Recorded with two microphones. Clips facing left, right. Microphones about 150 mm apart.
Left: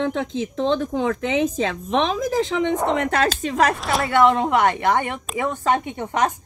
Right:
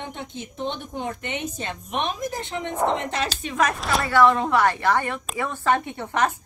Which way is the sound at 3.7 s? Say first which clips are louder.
Left 2 dB; centre (ahead or behind).